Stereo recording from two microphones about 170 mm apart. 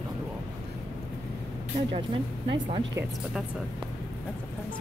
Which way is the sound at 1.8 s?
30° right (ahead or behind).